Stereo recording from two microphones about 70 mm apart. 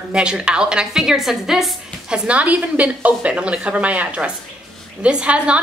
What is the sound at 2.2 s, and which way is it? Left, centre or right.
Speech, right.